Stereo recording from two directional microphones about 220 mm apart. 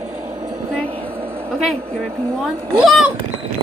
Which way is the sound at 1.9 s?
10° right (ahead or behind).